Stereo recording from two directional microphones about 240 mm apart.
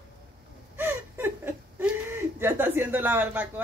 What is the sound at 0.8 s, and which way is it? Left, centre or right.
Whimper, centre.